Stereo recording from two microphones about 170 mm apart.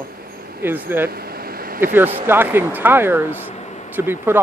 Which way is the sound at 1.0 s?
65° right (ahead or behind).